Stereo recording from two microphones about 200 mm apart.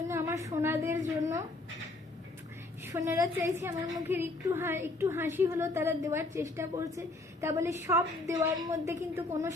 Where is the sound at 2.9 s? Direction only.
15° right (ahead or behind).